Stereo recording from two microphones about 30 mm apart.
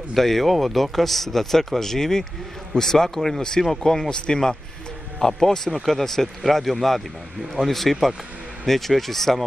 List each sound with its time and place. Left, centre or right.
0.1 s speech: centre
0.7 s speech: centre
0.9 s speech: centre